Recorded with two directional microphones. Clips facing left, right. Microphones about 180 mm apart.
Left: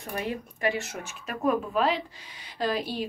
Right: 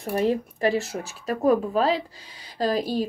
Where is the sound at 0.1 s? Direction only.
35° right (ahead or behind).